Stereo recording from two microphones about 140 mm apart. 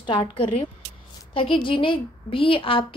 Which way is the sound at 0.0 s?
35° left (ahead or behind).